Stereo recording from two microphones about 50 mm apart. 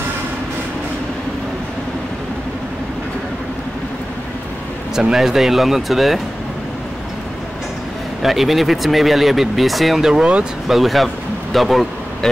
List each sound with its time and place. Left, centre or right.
5.1 s speech: centre
8.2 s speech: centre
10.0 s speech: centre